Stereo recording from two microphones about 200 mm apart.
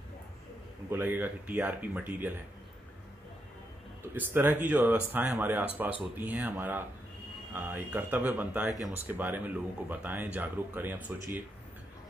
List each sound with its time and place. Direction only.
0.8 s speech: 10° right (ahead or behind)
4.0 s speech: 10° right (ahead or behind)